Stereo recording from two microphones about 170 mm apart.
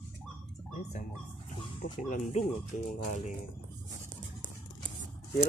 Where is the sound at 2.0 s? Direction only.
45° left (ahead or behind).